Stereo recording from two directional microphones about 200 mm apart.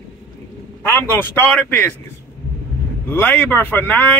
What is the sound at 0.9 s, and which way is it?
Speech, 10° left (ahead or behind).